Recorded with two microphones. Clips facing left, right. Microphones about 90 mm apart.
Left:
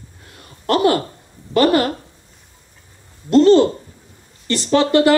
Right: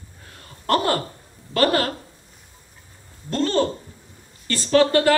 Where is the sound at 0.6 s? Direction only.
20° left (ahead or behind).